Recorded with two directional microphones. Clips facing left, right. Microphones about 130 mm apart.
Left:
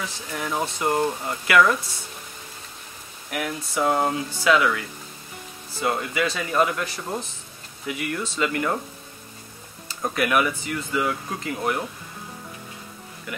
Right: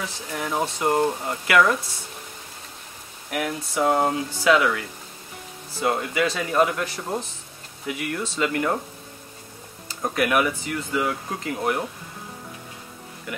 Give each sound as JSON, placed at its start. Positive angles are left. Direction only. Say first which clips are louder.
{"t": 0.0, "sound": "speech", "louder": "right 1 dB", "side_deg": -35}
{"t": 3.3, "sound": "speech", "louder": "right 2 dB", "side_deg": -40}
{"t": 10.1, "sound": "speech", "louder": "right 1 dB", "side_deg": -45}